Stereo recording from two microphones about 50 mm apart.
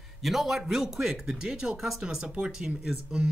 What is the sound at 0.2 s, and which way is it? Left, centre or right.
Speech, centre.